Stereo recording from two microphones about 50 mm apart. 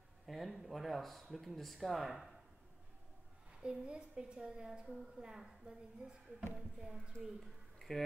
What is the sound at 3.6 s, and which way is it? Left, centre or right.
A woman's voice, centre.